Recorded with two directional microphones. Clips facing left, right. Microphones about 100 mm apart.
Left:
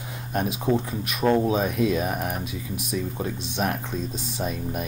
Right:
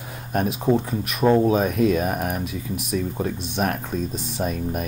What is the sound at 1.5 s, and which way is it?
Speech, 45° right (ahead or behind).